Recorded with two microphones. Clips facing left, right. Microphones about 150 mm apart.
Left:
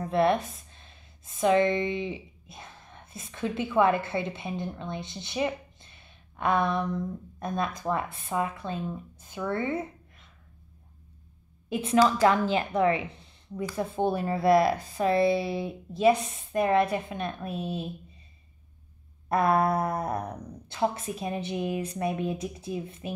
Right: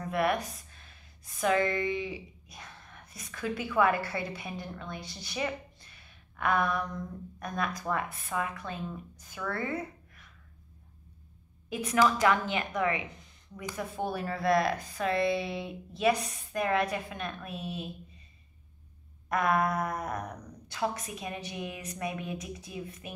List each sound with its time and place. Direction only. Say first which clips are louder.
0.0 s a woman's voice: left 5 dB; 25° left (ahead or behind)
11.7 s speech: left 4 dB; 25° left (ahead or behind)
14.5 s speech: left 5 dB; 5° left (ahead or behind)
14.8 s speech: left 5 dB; 30° left (ahead or behind)
19.2 s speech: left 4 dB; 30° left (ahead or behind)